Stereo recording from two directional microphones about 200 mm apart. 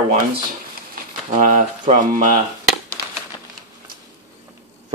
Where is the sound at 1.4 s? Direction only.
40° right (ahead or behind).